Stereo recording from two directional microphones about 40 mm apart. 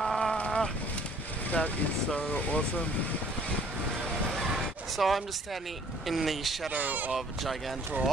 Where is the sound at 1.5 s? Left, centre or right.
Left.